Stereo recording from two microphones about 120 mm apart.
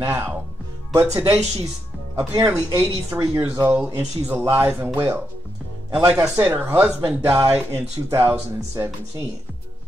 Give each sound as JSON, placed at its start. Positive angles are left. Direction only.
{"t": 0.0, "sound": "speech", "side_deg": -20}